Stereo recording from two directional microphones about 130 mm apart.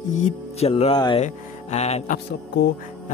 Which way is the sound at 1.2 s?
55° left (ahead or behind).